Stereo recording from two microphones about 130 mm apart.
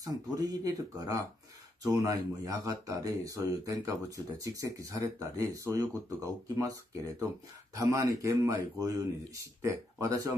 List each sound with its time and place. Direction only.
0.0 s speech: 30° right (ahead or behind)